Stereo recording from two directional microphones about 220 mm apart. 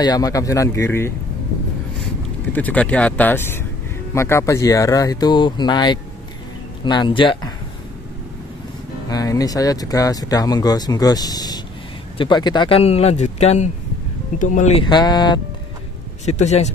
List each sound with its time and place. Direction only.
0.0 s speech: 15° left (ahead or behind)
2.5 s speech: 5° left (ahead or behind); by 7.5 s 20° left (ahead or behind)
9.1 s speech: 15° left (ahead or behind)
16.3 s speech: 30° left (ahead or behind)